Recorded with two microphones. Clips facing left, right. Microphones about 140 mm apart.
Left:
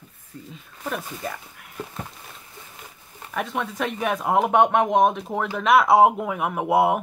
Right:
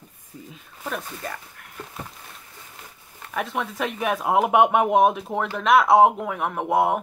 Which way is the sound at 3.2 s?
Centre (ahead or behind).